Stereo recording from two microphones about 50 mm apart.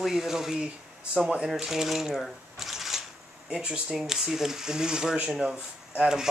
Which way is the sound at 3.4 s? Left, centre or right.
Right.